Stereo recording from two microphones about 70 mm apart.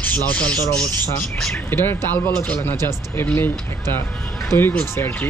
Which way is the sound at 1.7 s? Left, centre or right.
Left.